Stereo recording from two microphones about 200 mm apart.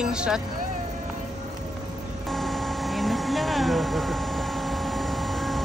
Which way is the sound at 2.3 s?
Centre (ahead or behind).